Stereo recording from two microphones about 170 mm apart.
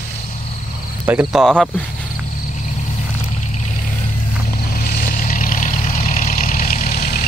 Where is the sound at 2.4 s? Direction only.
45° left (ahead or behind).